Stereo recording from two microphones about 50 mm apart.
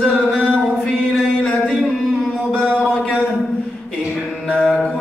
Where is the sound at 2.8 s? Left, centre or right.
Left.